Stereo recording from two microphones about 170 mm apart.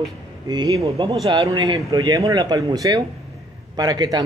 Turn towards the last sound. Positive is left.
turn(degrees=-20)  # may be behind; listen again after turning